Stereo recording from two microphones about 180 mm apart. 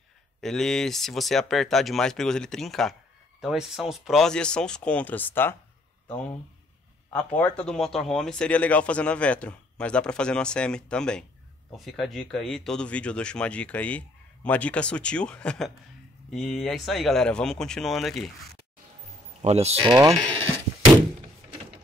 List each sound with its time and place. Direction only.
0.4 s speech: 5° left (ahead or behind)
7.1 s speech: 10° left (ahead or behind)
19.4 s speech: 35° right (ahead or behind)